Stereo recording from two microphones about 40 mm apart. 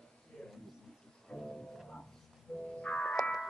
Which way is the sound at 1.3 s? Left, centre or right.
Centre.